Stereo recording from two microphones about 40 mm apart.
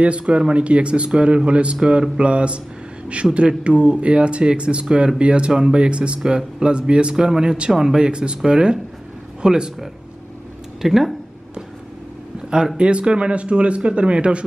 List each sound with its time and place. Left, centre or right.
0.3 s speech: right
10.8 s speech: centre
12.7 s speech: right